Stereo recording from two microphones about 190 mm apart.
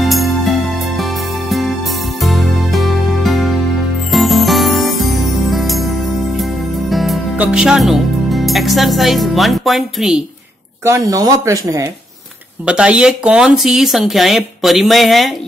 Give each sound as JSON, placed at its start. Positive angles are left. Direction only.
{"t": 0.0, "sound": "music", "side_deg": 0}
{"t": 6.9, "sound": "speech", "side_deg": 0}
{"t": 10.8, "sound": "speech", "side_deg": -15}
{"t": 12.6, "sound": "speech", "side_deg": -5}